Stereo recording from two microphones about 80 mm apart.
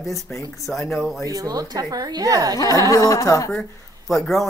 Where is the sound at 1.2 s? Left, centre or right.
Right.